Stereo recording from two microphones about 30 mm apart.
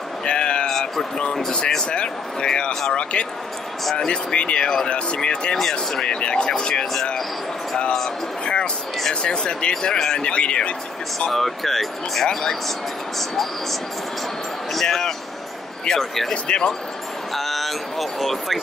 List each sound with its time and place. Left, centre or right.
0.2 s a sound: left
1.9 s speech: left
2.7 s speech: centre
3.0 s speech: left
5.6 s speech: centre
6.0 s speech: left
9.2 s speech: left
10.3 s speech: left
11.3 s speech: centre
12.3 s speech: centre
14.7 s speech: centre
16.4 s speech: left
17.3 s speech: centre